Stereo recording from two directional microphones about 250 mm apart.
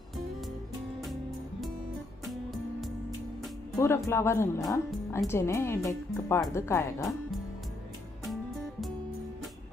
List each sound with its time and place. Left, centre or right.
2.2 s music: centre
3.7 s speech: centre